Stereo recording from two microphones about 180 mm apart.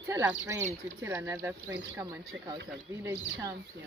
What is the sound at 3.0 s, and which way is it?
Speech, 15° right (ahead or behind).